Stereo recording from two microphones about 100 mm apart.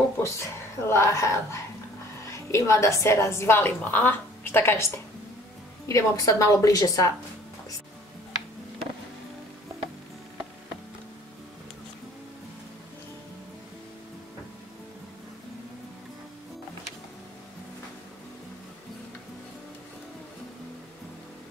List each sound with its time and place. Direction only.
0.2 s a woman's voice: 25° left (ahead or behind)
5.9 s a woman's voice: 30° left (ahead or behind)